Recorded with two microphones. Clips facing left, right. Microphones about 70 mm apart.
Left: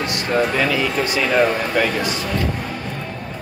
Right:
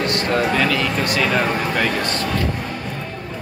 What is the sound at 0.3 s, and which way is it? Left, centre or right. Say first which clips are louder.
Speech: left 1 dB; centre.